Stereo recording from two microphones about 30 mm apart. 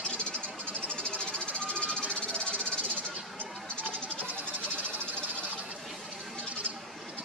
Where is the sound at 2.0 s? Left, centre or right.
Right.